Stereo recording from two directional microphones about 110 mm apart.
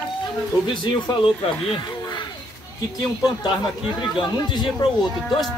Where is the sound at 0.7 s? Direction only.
50° left (ahead or behind).